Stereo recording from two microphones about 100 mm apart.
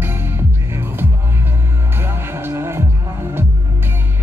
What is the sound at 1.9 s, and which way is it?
Music, 25° right (ahead or behind).